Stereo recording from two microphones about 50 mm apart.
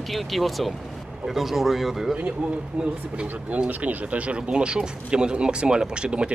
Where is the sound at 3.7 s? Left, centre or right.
Right.